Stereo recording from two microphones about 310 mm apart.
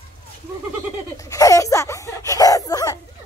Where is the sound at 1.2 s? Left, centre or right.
Centre.